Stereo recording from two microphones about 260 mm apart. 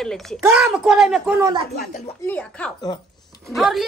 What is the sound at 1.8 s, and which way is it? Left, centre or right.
Speech, left.